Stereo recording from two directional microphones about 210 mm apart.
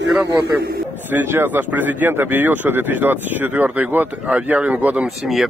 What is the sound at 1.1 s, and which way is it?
A man's voice, 10° right (ahead or behind).